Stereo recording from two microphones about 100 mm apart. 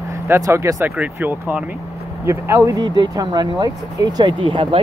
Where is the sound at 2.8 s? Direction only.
45° right (ahead or behind).